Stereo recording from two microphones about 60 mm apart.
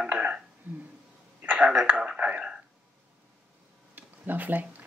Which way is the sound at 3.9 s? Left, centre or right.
Right.